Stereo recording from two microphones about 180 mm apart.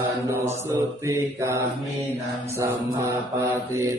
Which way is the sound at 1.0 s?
15° right (ahead or behind).